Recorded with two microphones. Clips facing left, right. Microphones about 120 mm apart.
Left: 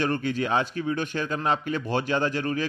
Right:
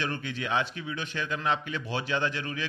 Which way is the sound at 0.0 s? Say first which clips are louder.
Left 7 dB; 45° left (ahead or behind).